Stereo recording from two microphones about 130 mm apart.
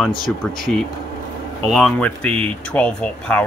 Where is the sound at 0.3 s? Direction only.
10° left (ahead or behind).